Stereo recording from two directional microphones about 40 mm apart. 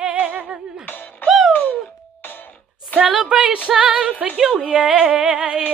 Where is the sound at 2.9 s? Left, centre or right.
Left.